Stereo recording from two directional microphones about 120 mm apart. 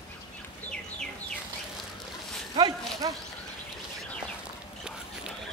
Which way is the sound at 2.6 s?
35° right (ahead or behind).